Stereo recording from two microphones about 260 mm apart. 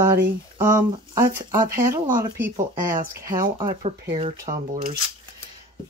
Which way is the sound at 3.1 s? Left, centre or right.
Centre.